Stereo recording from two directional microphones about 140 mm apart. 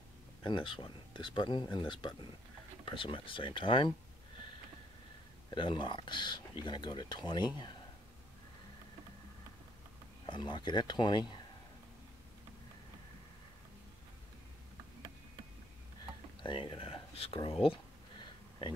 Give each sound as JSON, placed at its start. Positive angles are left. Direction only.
{"t": 0.4, "sound": "speech", "side_deg": 35}
{"t": 5.5, "sound": "speech", "side_deg": 35}
{"t": 10.2, "sound": "speech", "side_deg": 35}
{"t": 16.4, "sound": "speech", "side_deg": 40}
{"t": 17.6, "sound": "a sound", "side_deg": 35}